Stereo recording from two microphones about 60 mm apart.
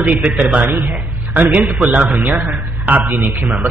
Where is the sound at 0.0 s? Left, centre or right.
Right.